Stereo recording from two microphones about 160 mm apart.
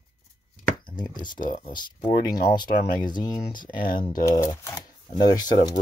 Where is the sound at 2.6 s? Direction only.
65° left (ahead or behind).